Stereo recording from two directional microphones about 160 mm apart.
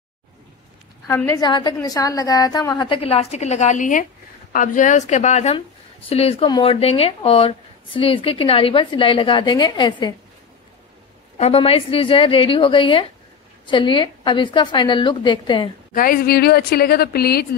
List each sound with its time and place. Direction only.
1.0 s a woman's voice: 15° left (ahead or behind)
1.4 s a woman's voice: 30° left (ahead or behind)
11.3 s speech: 40° left (ahead or behind)
15.9 s a woman's voice: 60° left (ahead or behind)